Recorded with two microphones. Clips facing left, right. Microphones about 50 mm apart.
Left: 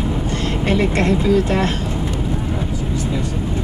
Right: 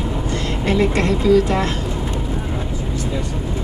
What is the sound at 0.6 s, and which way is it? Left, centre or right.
Speech, left.